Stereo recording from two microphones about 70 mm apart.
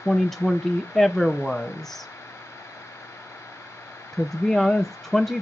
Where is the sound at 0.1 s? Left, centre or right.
Centre.